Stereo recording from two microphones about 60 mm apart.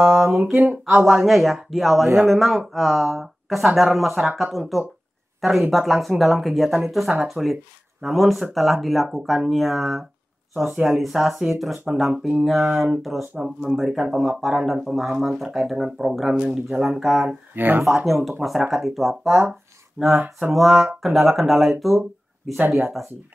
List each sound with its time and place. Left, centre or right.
0.1 s speech: centre
17.6 s speech: right
17.8 s speech: centre